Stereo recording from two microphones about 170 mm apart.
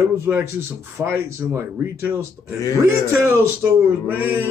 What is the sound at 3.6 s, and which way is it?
Speech, 10° right (ahead or behind).